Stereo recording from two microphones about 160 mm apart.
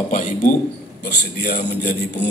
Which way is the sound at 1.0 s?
90° left.